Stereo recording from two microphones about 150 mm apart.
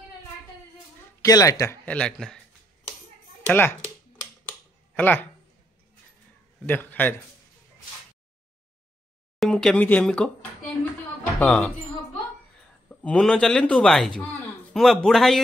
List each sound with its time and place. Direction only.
1.2 s speech: 20° left (ahead or behind)
1.9 s speech: 5° left (ahead or behind)
3.4 s a child's voice: 10° left (ahead or behind)
4.9 s speech: 10° left (ahead or behind)
6.6 s a man's voice: 15° left (ahead or behind)
9.4 s speech: 5° left (ahead or behind)
13.0 s speech: 5° left (ahead or behind)